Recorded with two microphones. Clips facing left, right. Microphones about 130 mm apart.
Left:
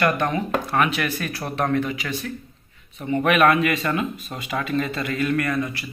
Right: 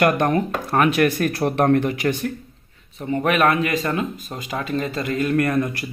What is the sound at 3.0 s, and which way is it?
Speech, 35° right (ahead or behind).